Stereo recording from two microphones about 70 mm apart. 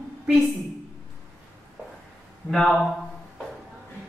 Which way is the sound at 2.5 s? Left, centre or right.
Centre.